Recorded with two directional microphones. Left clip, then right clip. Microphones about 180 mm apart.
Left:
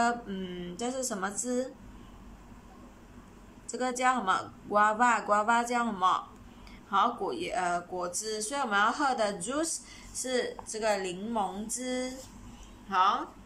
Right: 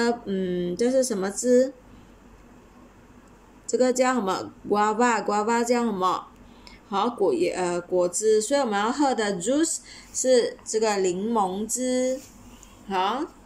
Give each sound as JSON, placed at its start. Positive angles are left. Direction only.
{"t": 0.0, "sound": "speech", "side_deg": -25}
{"t": 3.7, "sound": "speech", "side_deg": -25}